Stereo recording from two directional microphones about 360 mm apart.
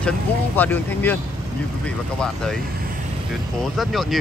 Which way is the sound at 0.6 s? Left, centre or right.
Centre.